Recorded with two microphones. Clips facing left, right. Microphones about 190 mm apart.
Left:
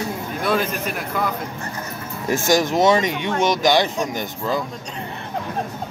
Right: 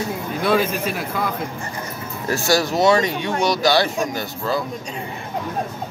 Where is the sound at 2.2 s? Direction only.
15° left (ahead or behind).